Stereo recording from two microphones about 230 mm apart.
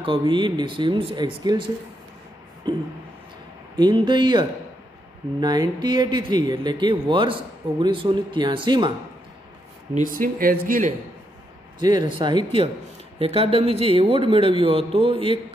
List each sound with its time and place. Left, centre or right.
0.0 s speech: right
2.6 s a sound: centre
3.7 s speech: centre
9.9 s speech: right
11.8 s speech: centre